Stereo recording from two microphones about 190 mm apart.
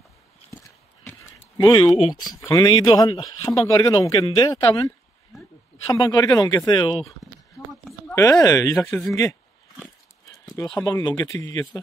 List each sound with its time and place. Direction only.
0.5 s horse: 15° left (ahead or behind)
1.6 s speech: 20° left (ahead or behind)
5.3 s a sound: centre (ahead or behind)
5.9 s speech: 20° left (ahead or behind)
8.1 s speech: 15° left (ahead or behind)
10.5 s speech: 5° left (ahead or behind)
10.8 s speech: 15° left (ahead or behind)